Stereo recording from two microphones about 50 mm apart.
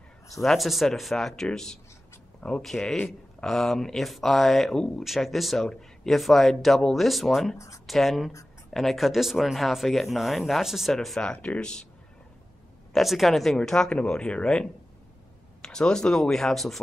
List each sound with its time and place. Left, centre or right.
0.4 s speech: centre
11.4 s speech: left
12.9 s speech: centre
13.6 s speech: centre